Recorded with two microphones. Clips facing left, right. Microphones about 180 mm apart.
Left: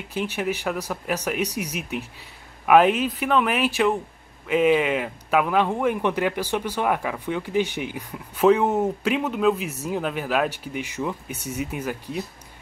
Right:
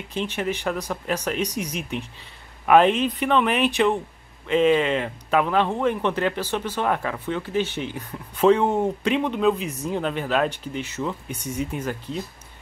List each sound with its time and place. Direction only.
0.1 s a man's voice: 10° left (ahead or behind)